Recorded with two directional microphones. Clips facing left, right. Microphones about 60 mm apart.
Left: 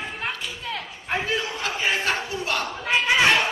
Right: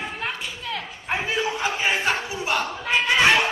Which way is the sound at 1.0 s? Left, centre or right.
Centre.